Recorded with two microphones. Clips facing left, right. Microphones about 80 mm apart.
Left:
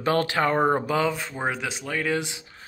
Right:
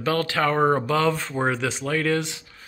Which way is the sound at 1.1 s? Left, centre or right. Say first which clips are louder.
Right 4 dB; centre.